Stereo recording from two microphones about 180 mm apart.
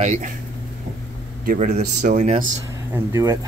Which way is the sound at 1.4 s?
50° right (ahead or behind).